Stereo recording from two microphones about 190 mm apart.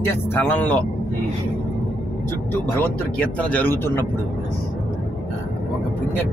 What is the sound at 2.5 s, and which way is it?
Speech, 10° left (ahead or behind).